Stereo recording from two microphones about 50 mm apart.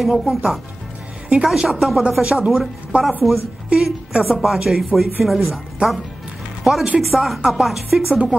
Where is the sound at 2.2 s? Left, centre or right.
Right.